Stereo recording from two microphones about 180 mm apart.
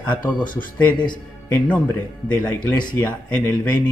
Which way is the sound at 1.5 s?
5° left (ahead or behind).